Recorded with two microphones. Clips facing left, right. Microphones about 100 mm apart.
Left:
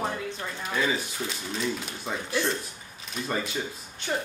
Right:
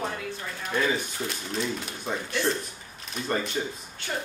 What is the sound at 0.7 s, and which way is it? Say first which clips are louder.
Speech: right 2 dB; centre (ahead or behind).